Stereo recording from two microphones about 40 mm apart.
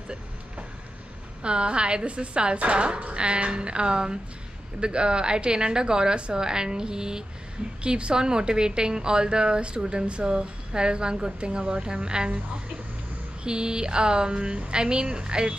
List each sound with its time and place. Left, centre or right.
1.4 s a woman's voice: right
13.4 s a woman's voice: right